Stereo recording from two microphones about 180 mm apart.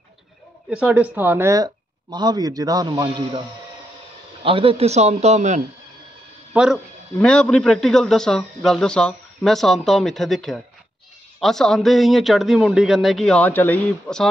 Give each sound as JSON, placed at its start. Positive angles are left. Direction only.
{"t": 0.7, "sound": "a man's voice", "side_deg": -5}
{"t": 6.5, "sound": "speech", "side_deg": -5}